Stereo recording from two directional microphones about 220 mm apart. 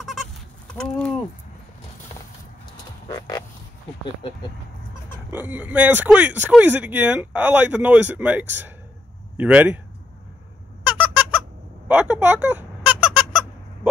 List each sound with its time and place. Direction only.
0.0 s fowl: centre (ahead or behind)
3.1 s a sound: 20° left (ahead or behind)
5.3 s speech: 5° right (ahead or behind)
11.0 s squeak: 5° right (ahead or behind)